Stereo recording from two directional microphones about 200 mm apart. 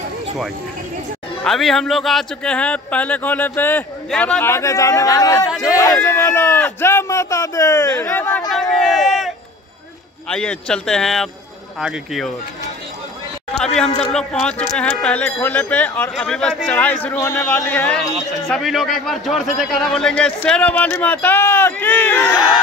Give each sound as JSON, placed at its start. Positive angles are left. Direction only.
{"t": 1.4, "sound": "a man's voice", "side_deg": 0}
{"t": 8.5, "sound": "a sound", "side_deg": 0}
{"t": 10.2, "sound": "speech", "side_deg": 5}
{"t": 14.1, "sound": "speech", "side_deg": 5}